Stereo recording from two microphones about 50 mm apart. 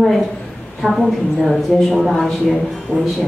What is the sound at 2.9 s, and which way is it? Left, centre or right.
Speech, left.